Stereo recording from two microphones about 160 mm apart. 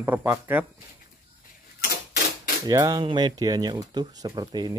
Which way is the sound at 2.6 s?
20° right (ahead or behind).